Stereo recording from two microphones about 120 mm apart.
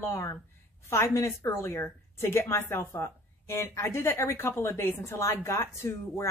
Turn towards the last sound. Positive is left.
turn(degrees=25)  # may be behind; listen again after turning